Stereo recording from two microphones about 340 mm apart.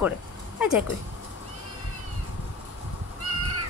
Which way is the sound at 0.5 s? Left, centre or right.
Centre.